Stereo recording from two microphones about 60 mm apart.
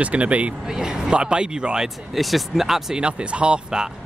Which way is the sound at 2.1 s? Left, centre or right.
Centre.